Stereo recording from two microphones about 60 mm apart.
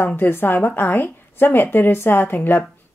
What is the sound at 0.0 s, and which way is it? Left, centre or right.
Speech, left.